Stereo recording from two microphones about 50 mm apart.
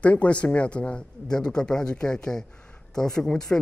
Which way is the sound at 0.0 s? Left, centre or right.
Left.